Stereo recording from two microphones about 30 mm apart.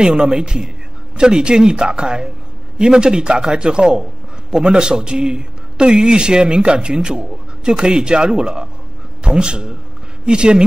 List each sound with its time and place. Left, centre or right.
0.0 s a man's voice: right